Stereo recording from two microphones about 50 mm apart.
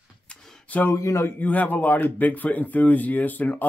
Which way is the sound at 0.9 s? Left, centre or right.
Left.